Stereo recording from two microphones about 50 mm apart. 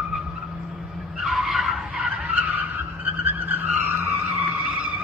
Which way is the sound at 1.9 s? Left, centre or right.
Centre.